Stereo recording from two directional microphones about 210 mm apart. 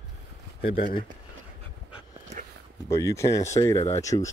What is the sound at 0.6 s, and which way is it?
Speech, 45° left (ahead or behind).